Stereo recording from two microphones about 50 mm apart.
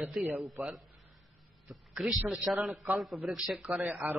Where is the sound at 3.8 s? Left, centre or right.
Right.